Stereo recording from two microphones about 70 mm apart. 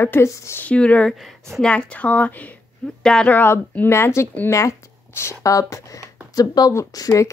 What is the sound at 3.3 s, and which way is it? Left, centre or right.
Speech, left.